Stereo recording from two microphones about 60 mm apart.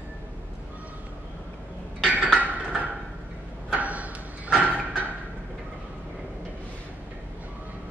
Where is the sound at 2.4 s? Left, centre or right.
Right.